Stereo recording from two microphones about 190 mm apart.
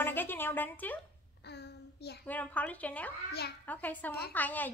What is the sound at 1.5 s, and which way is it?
Child singing, 60° left (ahead or behind).